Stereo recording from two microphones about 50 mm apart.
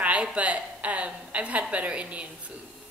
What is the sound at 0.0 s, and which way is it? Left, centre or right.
A woman's voice, right.